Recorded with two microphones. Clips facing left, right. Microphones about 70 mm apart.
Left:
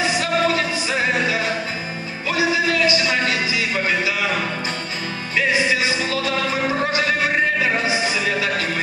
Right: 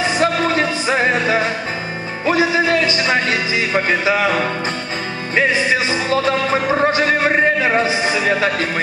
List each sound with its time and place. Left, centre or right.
0.2 s music: right